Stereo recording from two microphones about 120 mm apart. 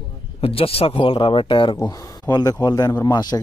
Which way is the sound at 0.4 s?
50° left (ahead or behind).